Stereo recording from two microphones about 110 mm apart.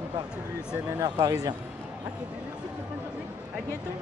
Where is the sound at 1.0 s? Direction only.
35° right (ahead or behind).